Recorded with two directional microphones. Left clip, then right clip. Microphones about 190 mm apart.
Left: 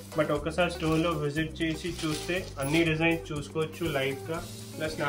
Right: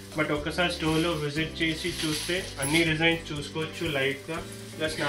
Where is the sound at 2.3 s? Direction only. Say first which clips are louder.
Right 1 dB; 20° left (ahead or behind).